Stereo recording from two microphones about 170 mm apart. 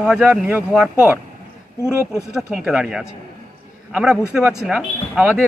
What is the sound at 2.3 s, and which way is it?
Speech, 5° right (ahead or behind).